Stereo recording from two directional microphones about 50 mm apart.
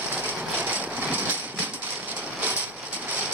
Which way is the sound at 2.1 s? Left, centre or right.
Right.